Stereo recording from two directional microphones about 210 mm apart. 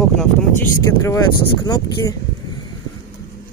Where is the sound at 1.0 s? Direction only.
15° left (ahead or behind).